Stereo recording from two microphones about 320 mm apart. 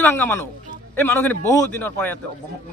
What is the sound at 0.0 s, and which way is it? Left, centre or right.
A man's voice, centre.